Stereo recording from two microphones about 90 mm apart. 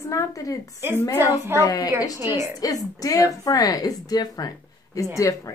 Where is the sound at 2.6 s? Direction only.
40° left (ahead or behind).